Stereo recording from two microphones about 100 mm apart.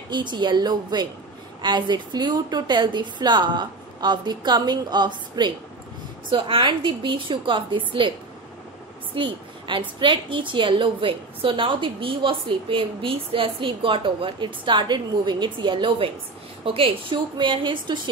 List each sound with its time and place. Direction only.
0.1 s a woman's voice: 50° right (ahead or behind)
6.3 s a woman's voice: 60° right (ahead or behind)
9.1 s a woman's voice: 55° right (ahead or behind)